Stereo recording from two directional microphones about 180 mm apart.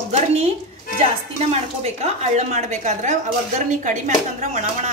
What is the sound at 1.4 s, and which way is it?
A woman's voice, 35° right (ahead or behind).